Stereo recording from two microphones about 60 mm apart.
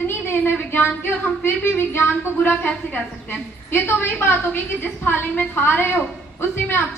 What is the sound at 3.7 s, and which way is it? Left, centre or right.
A woman's voice, left.